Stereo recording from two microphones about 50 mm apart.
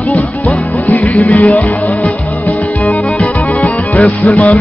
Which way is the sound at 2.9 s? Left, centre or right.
Left.